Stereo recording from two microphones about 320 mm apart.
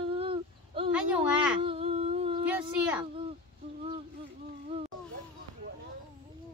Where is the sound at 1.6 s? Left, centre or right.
Centre.